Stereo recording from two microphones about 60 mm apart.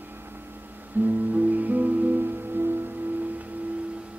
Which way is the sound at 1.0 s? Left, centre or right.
Right.